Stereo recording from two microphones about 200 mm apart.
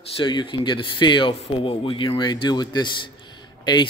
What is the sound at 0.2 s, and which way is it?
Speech, 25° left (ahead or behind).